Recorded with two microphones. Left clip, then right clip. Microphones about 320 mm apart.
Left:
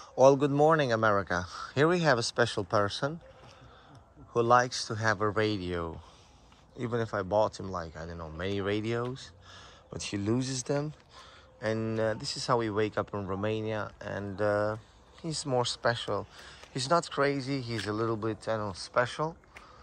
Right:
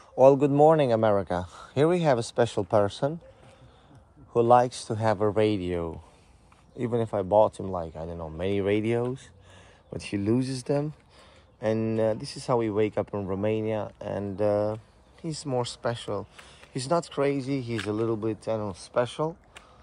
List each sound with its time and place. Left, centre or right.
0.1 s speech: centre
4.3 s speech: centre
10.1 s speech: centre
10.4 s speech: left
11.6 s speech: centre
12.2 s speech: left
12.4 s speech: centre